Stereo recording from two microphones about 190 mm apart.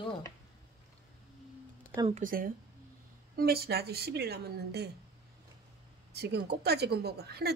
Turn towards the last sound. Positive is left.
turn(degrees=-55)  # may be behind; listen again after turning